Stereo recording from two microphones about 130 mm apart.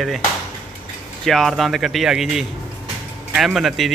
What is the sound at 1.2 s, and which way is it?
Speech, centre (ahead or behind).